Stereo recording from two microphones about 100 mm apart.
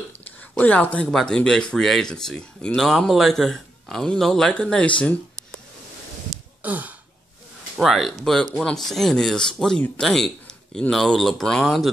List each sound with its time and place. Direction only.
0.6 s speech: 15° left (ahead or behind)
6.6 s gasp: 15° right (ahead or behind)
7.7 s speech: centre (ahead or behind)